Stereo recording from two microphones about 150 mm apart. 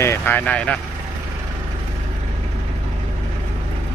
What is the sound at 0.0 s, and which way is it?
Speech, 15° left (ahead or behind).